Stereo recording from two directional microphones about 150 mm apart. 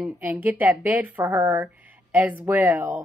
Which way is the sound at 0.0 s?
10° right (ahead or behind).